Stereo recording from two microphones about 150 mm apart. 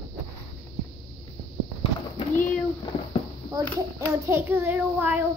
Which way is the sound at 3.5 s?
20° right (ahead or behind).